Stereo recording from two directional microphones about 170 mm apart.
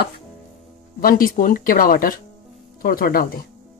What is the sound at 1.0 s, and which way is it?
Speech, 55° left (ahead or behind).